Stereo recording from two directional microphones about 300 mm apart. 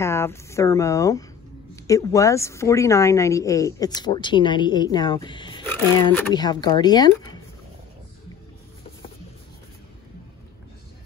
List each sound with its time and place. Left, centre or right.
0.0 s a woman's voice: centre